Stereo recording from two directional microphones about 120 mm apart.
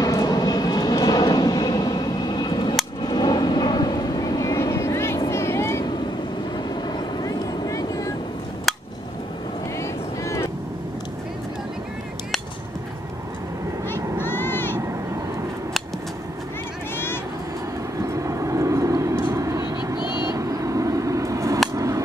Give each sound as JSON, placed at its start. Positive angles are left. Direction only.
{"t": 0.0, "sound": "vehicle", "side_deg": 35}
{"t": 6.5, "sound": "vehicle", "side_deg": 35}
{"t": 8.7, "sound": "a sound", "side_deg": 0}
{"t": 9.8, "sound": "vehicle", "side_deg": 25}
{"t": 14.2, "sound": "vehicle", "side_deg": 20}
{"t": 18.0, "sound": "vehicle", "side_deg": -25}
{"t": 21.7, "sound": "a sound", "side_deg": -25}